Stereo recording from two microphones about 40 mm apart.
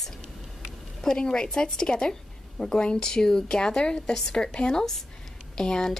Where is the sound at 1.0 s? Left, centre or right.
Centre.